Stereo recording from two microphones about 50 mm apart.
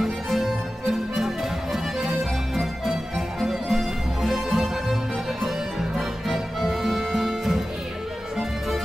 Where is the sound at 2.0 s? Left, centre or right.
Centre.